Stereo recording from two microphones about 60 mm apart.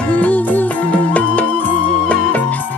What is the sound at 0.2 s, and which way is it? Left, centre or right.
Music, left.